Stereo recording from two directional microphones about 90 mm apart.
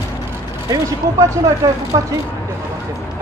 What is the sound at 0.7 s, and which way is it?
A man's voice, 35° right (ahead or behind).